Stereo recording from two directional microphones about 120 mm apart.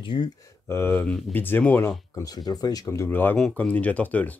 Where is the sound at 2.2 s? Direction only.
35° left (ahead or behind).